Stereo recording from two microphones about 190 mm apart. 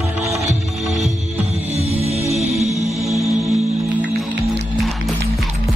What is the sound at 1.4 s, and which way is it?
Music, 35° right (ahead or behind).